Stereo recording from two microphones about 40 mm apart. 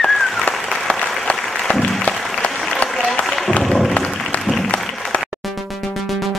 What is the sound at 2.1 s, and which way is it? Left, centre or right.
Applause, left.